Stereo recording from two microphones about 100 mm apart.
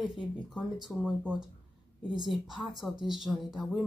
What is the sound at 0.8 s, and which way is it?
Speech, 5° right (ahead or behind).